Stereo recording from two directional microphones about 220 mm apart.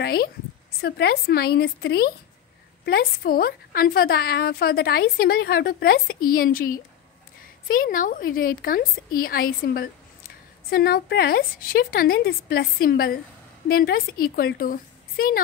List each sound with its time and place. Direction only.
0.0 s a woman's voice: 45° left (ahead or behind)